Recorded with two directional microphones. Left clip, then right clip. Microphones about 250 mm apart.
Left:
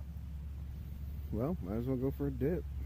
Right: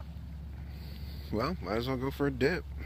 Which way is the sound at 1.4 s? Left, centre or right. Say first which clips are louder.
Right 6 dB; centre.